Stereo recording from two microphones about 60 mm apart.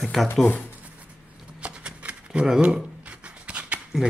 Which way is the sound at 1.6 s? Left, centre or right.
Centre.